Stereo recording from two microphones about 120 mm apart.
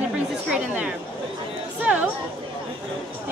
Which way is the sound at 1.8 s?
10° right (ahead or behind).